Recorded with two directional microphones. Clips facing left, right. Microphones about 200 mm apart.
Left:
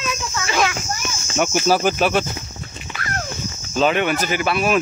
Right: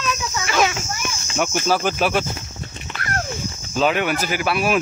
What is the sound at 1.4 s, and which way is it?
Cricket, 5° left (ahead or behind).